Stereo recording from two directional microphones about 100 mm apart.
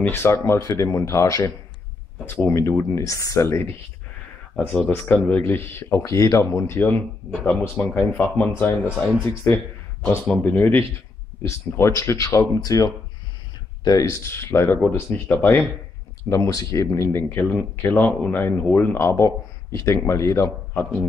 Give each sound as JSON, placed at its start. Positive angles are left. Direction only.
{"t": 0.0, "sound": "speech", "side_deg": 25}
{"t": 4.6, "sound": "speech", "side_deg": 10}
{"t": 10.2, "sound": "speech", "side_deg": 10}
{"t": 16.3, "sound": "speech", "side_deg": 35}